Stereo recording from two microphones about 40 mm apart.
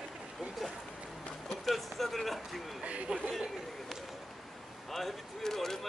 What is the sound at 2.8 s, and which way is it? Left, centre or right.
Speech, right.